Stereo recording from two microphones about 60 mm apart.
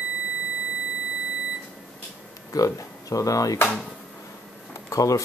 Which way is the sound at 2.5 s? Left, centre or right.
Left.